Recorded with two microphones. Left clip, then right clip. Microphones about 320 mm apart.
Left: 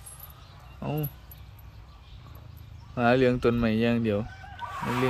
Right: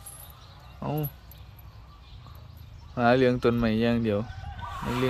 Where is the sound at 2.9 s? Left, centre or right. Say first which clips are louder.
Right 1 dB; centre.